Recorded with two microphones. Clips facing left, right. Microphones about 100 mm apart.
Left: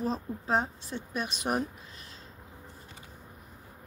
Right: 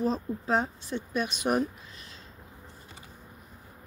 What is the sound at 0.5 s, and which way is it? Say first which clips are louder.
Speech: right 1 dB; 30° left (ahead or behind).